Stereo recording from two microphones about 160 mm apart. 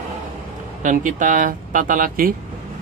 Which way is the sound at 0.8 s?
55° right (ahead or behind).